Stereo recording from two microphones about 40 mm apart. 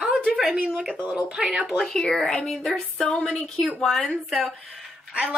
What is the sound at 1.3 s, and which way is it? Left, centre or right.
Speech, centre.